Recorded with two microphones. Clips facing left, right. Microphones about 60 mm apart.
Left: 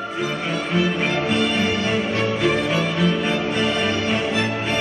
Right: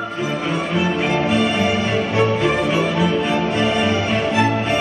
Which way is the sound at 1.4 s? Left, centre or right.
Centre.